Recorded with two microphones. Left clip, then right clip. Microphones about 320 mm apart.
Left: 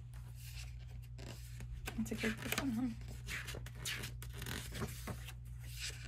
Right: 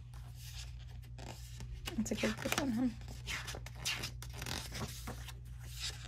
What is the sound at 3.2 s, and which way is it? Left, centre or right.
Zipper, centre.